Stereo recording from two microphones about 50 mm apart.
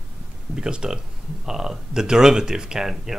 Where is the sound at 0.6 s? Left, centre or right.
Centre.